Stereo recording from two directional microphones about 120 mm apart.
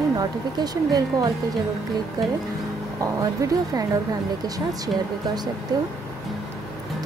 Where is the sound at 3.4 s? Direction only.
25° right (ahead or behind).